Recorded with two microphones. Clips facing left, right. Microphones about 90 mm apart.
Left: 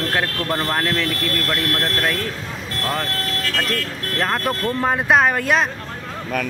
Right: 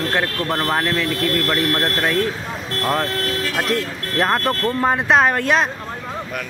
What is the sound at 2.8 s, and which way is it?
Speech, 10° right (ahead or behind).